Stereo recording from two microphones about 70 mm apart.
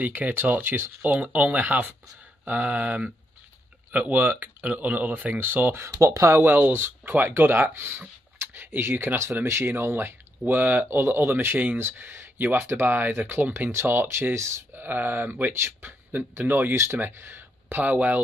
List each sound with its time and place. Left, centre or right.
0.0 s speech: right
1.1 s speech: centre
5.8 s speech: right
6.4 s speech: right
14.9 s speech: right